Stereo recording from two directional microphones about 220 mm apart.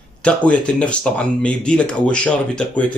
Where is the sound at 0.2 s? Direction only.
5° left (ahead or behind).